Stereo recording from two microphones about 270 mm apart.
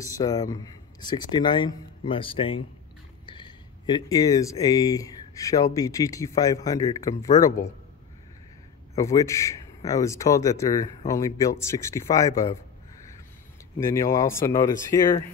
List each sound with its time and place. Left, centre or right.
0.0 s speech: centre
8.9 s speech: centre
13.7 s speech: centre